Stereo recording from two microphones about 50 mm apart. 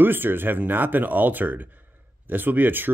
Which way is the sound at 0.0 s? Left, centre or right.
Right.